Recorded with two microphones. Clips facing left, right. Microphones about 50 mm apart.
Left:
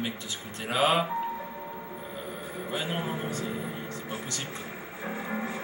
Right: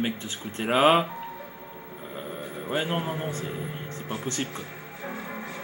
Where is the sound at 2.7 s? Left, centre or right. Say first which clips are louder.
Right 4 dB; right.